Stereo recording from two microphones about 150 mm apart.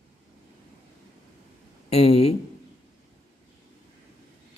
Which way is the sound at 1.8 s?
40° left (ahead or behind).